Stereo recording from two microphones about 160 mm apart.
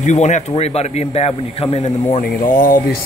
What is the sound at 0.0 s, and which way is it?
A man's voice, 50° left (ahead or behind).